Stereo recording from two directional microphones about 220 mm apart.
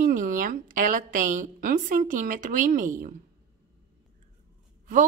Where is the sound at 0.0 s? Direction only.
40° right (ahead or behind).